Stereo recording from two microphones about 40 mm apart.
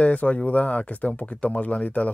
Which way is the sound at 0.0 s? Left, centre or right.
Left.